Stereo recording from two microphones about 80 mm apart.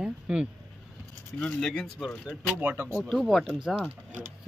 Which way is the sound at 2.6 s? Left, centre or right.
Right.